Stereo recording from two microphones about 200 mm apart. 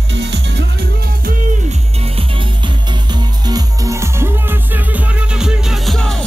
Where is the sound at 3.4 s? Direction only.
20° right (ahead or behind).